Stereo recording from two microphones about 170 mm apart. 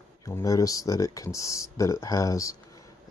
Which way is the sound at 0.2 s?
20° left (ahead or behind).